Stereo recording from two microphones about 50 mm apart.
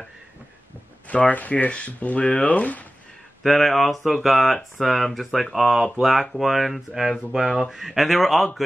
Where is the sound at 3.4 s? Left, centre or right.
Centre.